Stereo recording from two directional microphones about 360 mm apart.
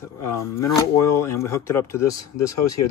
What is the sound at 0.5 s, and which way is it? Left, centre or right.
Speech, centre.